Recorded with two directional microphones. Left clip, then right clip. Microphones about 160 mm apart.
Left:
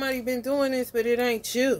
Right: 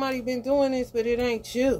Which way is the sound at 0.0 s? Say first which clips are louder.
Even; 35° left (ahead or behind).